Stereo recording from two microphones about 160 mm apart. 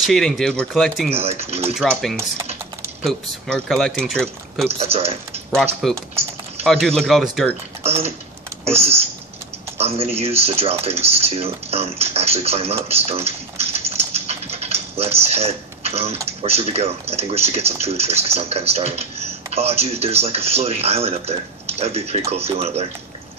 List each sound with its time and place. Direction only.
0.0 s speech: 5° left (ahead or behind)
1.1 s speech: 40° right (ahead or behind)
1.8 s speech: centre (ahead or behind)
4.6 s speech: 40° right (ahead or behind)
5.8 s speech: centre (ahead or behind)
7.8 s a sound: 40° right (ahead or behind)
8.6 s speech: 40° right (ahead or behind)
9.8 s a sound: 40° right (ahead or behind)
10.1 s speech: 40° right (ahead or behind)